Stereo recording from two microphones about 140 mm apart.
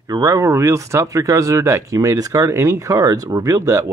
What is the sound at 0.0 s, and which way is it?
Speech, 25° right (ahead or behind).